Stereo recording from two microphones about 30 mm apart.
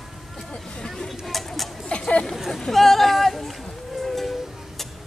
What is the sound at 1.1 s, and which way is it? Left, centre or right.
Bird, centre.